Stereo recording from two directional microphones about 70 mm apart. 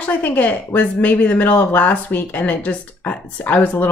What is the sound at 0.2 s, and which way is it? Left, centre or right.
A woman's voice, left.